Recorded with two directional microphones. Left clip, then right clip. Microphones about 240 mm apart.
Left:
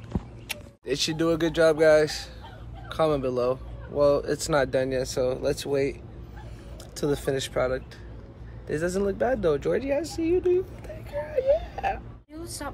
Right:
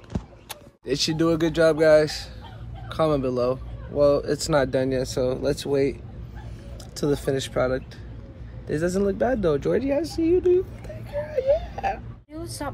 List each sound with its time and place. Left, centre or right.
0.8 s speech: centre
7.0 s speech: centre
12.4 s speech: centre